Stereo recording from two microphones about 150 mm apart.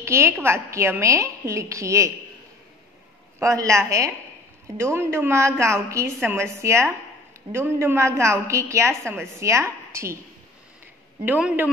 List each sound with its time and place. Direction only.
0.0 s a woman's voice: 20° right (ahead or behind)
3.3 s a woman's voice: 20° right (ahead or behind)
11.2 s a woman's voice: 10° right (ahead or behind)